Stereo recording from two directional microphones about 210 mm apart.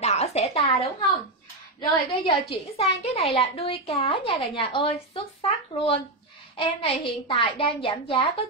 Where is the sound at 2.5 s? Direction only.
30° left (ahead or behind).